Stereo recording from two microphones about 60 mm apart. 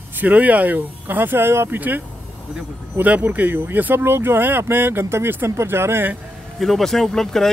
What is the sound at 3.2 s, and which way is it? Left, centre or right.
Speech, right.